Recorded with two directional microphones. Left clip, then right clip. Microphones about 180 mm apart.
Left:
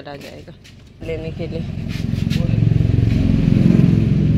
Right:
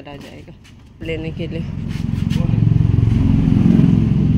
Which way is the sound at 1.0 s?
30° right (ahead or behind).